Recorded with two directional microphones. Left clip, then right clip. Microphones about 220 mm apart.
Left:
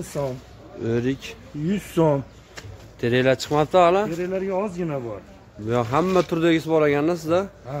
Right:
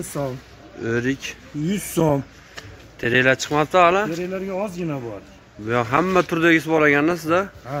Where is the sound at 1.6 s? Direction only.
50° right (ahead or behind).